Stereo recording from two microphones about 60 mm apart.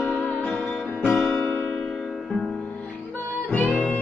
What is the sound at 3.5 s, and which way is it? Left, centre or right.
Music, left.